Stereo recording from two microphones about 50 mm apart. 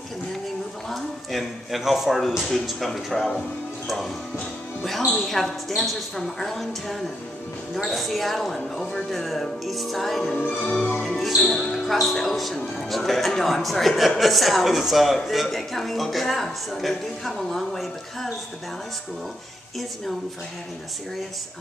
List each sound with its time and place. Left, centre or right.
0.8 s a man's voice: centre
5.2 s speech: centre
10.7 s music: left
11.0 s speech: centre